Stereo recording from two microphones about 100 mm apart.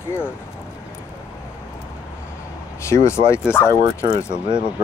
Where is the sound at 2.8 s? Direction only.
25° left (ahead or behind).